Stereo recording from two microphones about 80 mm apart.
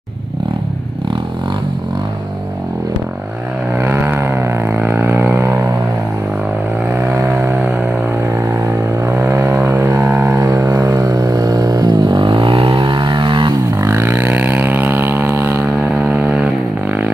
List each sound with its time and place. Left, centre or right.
3.7 s vehicle: right
7.0 s vehicle: right
7.3 s music: right
9.1 s vehicle: right
9.8 s music: right
10.4 s a sound: right
11.0 s vehicle: right
13.7 s vehicle: right
16.1 s vehicle: right